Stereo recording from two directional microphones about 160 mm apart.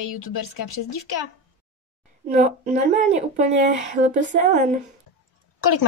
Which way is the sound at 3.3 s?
50° right (ahead or behind).